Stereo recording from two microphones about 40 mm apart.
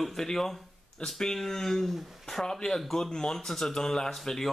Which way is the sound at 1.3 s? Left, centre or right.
Centre.